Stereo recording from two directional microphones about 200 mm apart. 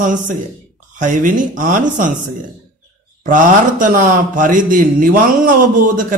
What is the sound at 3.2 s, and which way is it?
Speech, 40° right (ahead or behind).